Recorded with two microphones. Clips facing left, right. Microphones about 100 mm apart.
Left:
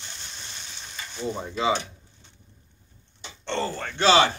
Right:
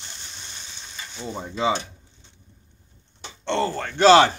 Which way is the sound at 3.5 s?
55° right (ahead or behind).